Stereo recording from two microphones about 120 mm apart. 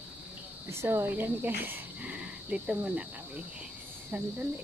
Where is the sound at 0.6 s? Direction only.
20° right (ahead or behind).